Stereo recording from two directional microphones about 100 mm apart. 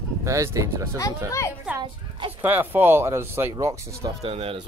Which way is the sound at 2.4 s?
20° right (ahead or behind).